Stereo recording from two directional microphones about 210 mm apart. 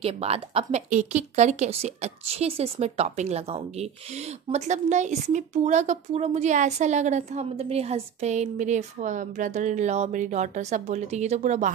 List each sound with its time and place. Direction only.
0.0 s a woman's voice: 30° right (ahead or behind)